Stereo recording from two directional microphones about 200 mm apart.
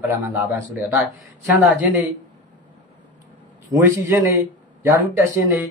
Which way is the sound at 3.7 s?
15° right (ahead or behind).